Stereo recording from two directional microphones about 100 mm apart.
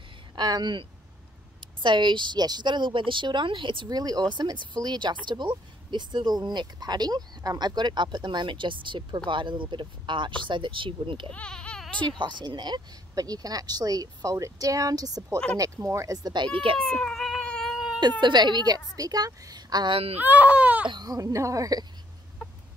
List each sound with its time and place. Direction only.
0.4 s a woman's voice: 45° right (ahead or behind); by 11.3 s 60° right (ahead or behind)
11.3 s baby cry: 10° left (ahead or behind)
12.2 s speech: 50° right (ahead or behind)
16.7 s cat: 10° left (ahead or behind)
17.6 s cat: 5° right (ahead or behind)
18.2 s a woman's voice: 45° right (ahead or behind)
20.2 s speech: 15° right (ahead or behind)
20.9 s speech: 40° right (ahead or behind)